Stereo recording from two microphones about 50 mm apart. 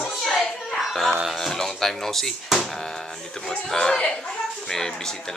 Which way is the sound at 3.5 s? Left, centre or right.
Centre.